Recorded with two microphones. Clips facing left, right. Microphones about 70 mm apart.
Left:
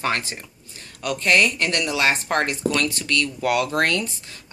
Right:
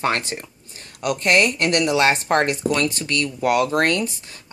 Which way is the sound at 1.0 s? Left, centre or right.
Right.